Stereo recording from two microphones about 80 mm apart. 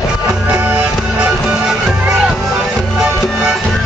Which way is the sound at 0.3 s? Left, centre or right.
Right.